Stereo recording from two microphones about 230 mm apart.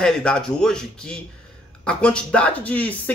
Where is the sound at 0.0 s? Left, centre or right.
Centre.